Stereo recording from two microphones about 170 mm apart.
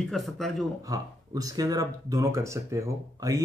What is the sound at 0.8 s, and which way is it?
Speech, 20° right (ahead or behind).